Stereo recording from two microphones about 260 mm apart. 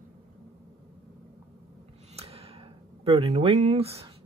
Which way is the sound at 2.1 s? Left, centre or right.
Right.